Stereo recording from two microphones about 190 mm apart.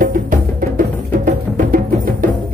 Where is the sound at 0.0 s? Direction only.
45° right (ahead or behind).